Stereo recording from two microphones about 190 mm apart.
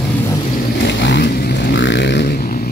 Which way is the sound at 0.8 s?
65° left (ahead or behind).